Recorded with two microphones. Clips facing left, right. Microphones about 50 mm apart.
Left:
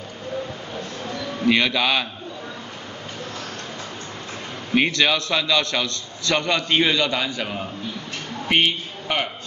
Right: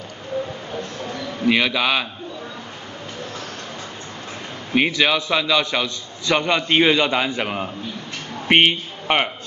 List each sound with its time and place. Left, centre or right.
1.4 s a man's voice: centre
4.7 s a man's voice: centre; by 9.3 s right